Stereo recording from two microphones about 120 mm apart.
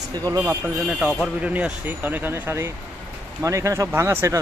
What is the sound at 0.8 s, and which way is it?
A man's voice, 5° right (ahead or behind).